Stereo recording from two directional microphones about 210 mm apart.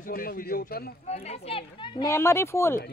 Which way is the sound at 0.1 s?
45° left (ahead or behind).